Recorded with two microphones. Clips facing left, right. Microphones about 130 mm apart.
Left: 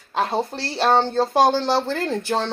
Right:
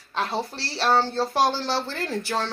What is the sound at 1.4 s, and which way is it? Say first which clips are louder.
Speech: left 6 dB; 50° left (ahead or behind).